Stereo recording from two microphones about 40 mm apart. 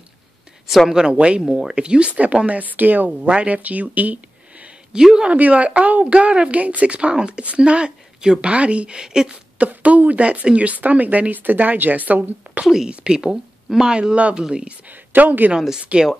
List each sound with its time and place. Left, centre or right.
0.8 s a woman's voice: centre; by 3.3 s right
3.3 s speech: right
4.9 s speech: right
5.3 s a woman's voice: right; by 9.4 s centre
9.7 s a woman's voice: right
12.6 s speech: centre
12.9 s speech: right
14.1 s a woman's voice: right
14.4 s speech: right
14.9 s speech: right
15.9 s a woman's voice: right